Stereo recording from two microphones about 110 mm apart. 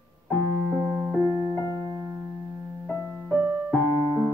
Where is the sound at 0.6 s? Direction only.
20° left (ahead or behind).